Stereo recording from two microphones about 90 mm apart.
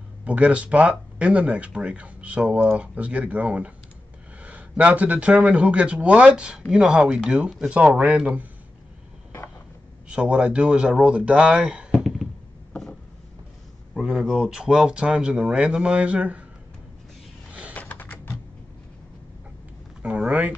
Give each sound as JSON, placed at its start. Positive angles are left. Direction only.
{"t": 0.2, "sound": "speech", "side_deg": -15}
{"t": 10.0, "sound": "speech", "side_deg": -15}
{"t": 13.9, "sound": "speech", "side_deg": -5}
{"t": 17.5, "sound": "a sound", "side_deg": -15}
{"t": 17.7, "sound": "computer keyboard", "side_deg": 20}
{"t": 20.0, "sound": "speech", "side_deg": -15}